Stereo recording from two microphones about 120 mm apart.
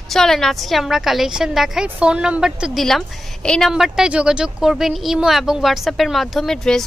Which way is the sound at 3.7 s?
5° right (ahead or behind).